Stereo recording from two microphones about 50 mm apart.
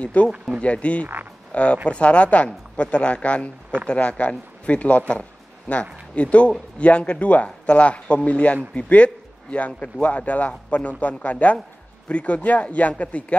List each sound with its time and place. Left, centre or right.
0.0 s a man's voice: left
6.1 s a man's voice: left